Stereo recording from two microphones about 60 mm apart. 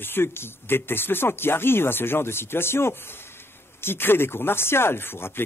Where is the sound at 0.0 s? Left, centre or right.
Left.